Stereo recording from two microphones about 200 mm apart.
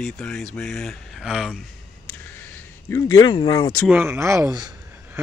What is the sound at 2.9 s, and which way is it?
Speech, 20° left (ahead or behind).